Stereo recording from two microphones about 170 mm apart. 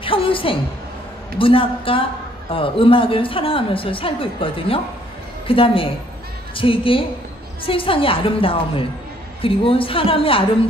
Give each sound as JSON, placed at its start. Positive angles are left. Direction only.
{"t": 0.0, "sound": "a woman's voice", "side_deg": 30}